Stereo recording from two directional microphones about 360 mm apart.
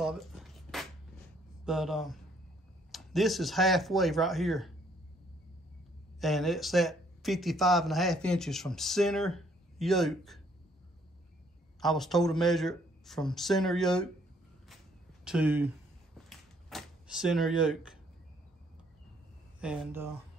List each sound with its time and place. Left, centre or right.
0.0 s a sound: centre
1.6 s speech: centre
6.2 s speech: centre
11.8 s speech: centre
15.2 s speech: centre
16.3 s a sound: centre
19.6 s speech: centre